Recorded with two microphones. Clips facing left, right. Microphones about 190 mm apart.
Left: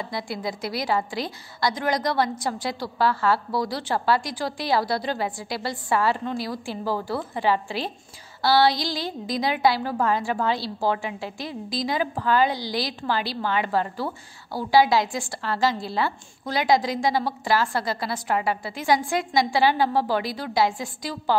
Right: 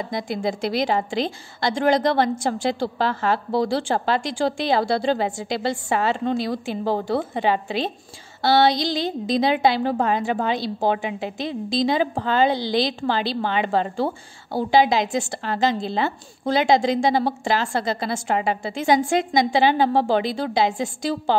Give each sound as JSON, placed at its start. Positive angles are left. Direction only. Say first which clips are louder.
{"t": 0.0, "sound": "a woman's voice", "louder": "right 5 dB", "side_deg": -20}